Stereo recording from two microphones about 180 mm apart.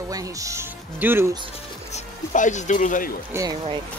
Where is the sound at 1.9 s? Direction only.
40° left (ahead or behind).